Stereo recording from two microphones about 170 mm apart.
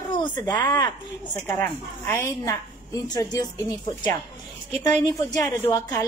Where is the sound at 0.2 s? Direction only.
25° left (ahead or behind).